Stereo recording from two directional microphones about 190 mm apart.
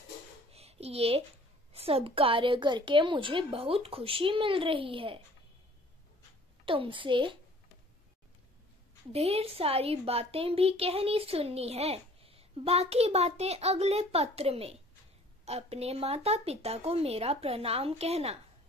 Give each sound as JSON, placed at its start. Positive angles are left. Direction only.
{"t": 0.5, "sound": "a sound", "side_deg": -35}
{"t": 1.7, "sound": "a woman's voice", "side_deg": -30}
{"t": 6.6, "sound": "a woman's voice", "side_deg": -25}
{"t": 9.1, "sound": "speech", "side_deg": -30}